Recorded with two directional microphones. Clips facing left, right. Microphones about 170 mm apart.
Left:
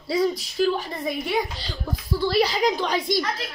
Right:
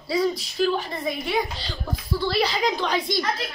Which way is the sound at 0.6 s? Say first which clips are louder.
Even; 10° left (ahead or behind).